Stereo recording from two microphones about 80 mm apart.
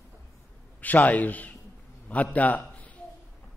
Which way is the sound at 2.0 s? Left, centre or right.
Centre.